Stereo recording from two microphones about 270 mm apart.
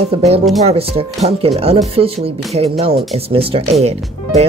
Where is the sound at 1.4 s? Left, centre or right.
Right.